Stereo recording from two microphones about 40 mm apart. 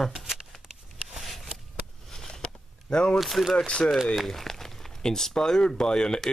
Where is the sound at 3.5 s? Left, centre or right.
Left.